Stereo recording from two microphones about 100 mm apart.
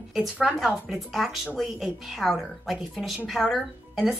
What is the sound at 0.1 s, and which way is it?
A woman's voice, 5° right (ahead or behind).